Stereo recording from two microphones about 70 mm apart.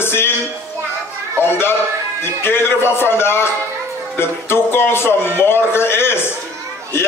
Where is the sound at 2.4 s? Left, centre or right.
Left.